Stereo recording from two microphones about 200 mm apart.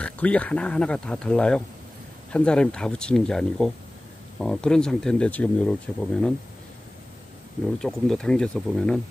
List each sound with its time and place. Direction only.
0.0 s speech: 5° left (ahead or behind)
7.8 s speech: 5° left (ahead or behind)